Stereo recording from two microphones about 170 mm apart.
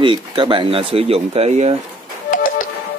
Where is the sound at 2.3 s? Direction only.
55° left (ahead or behind).